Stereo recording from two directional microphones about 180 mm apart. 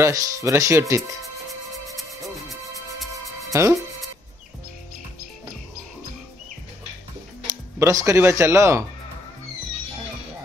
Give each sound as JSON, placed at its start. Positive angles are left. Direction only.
{"t": 0.0, "sound": "speech", "side_deg": -15}
{"t": 2.0, "sound": "music", "side_deg": 0}
{"t": 3.5, "sound": "speech", "side_deg": -15}
{"t": 7.8, "sound": "speech", "side_deg": -15}